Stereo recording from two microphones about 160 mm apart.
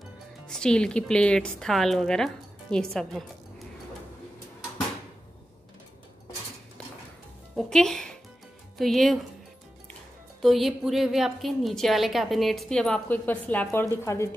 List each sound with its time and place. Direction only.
0.5 s speech: 5° left (ahead or behind)
7.5 s music: centre (ahead or behind)
8.7 s a woman's voice: centre (ahead or behind)
10.4 s a woman's voice: centre (ahead or behind); by 14.3 s 15° left (ahead or behind)